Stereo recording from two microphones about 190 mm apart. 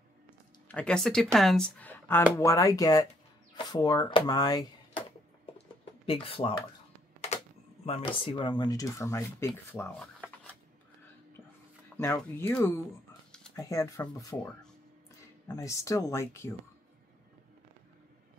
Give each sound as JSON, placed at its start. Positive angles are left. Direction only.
{"t": 0.7, "sound": "speech", "side_deg": 5}
{"t": 6.0, "sound": "speech", "side_deg": 30}
{"t": 7.8, "sound": "speech", "side_deg": 30}
{"t": 12.0, "sound": "speech", "side_deg": 15}
{"t": 15.5, "sound": "speech", "side_deg": 15}